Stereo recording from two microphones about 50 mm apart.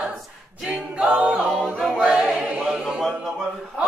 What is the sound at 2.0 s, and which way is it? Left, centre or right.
Choir, right.